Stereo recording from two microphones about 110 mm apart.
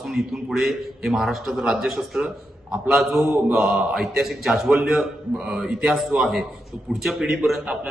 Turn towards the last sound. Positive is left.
turn(degrees=0)  # may be behind; listen again after turning